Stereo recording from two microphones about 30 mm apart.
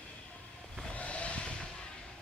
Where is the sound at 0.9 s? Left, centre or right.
Left.